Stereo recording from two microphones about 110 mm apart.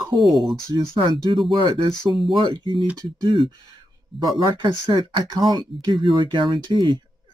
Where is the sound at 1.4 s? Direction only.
50° right (ahead or behind).